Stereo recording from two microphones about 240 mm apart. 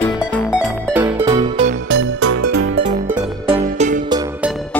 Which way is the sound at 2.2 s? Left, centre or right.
Right.